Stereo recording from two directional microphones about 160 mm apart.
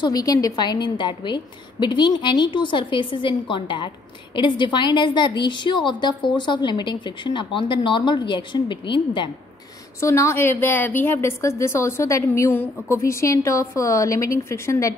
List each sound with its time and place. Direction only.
0.0 s a woman's voice: 20° left (ahead or behind)
9.9 s a woman's voice: 20° left (ahead or behind)